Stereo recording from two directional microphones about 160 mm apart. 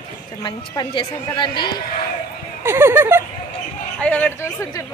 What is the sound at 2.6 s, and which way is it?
Speech, 15° right (ahead or behind).